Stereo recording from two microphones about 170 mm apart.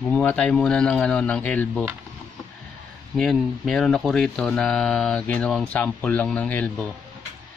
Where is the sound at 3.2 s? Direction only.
Centre (ahead or behind).